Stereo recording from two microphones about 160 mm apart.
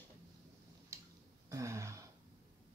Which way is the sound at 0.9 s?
20° right (ahead or behind).